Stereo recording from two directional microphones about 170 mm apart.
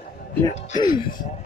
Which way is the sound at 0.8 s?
25° left (ahead or behind).